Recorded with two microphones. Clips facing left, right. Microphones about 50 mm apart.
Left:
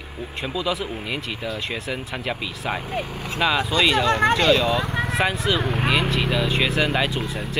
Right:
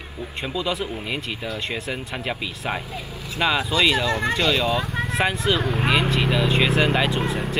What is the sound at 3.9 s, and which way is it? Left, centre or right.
Speech, left.